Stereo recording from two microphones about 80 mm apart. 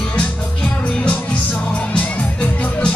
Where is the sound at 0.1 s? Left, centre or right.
Centre.